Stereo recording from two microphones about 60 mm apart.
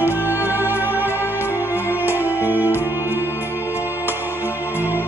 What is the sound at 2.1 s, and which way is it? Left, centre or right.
Music, right.